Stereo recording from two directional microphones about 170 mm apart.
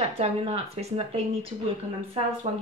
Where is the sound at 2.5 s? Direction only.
40° right (ahead or behind).